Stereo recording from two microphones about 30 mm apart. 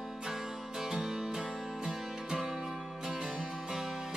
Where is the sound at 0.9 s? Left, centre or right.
Right.